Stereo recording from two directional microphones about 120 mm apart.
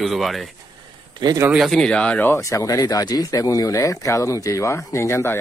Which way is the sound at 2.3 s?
25° left (ahead or behind).